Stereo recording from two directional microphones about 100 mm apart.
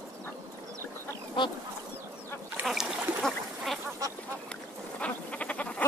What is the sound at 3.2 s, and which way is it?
Duck, centre (ahead or behind).